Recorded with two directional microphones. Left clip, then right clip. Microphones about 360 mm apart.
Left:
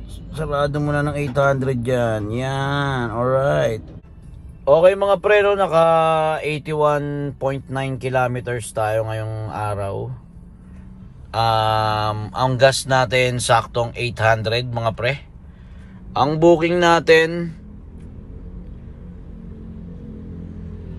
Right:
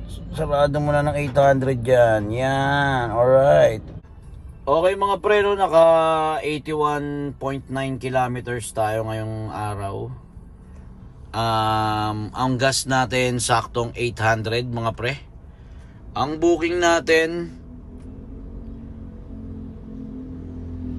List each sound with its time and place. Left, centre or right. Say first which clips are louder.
0.2 s a man's voice: right 2 dB; centre
11.3 s a man's voice: left 3 dB; centre